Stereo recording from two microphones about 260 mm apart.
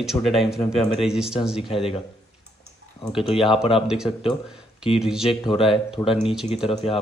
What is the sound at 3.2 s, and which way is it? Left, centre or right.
Speech, centre.